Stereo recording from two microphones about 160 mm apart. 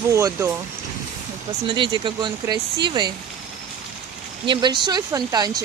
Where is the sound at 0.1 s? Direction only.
20° right (ahead or behind).